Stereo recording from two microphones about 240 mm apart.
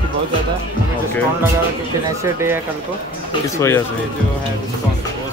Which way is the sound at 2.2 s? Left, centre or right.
Centre.